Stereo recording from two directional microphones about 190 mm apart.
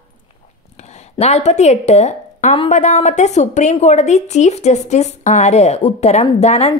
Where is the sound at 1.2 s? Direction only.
35° left (ahead or behind).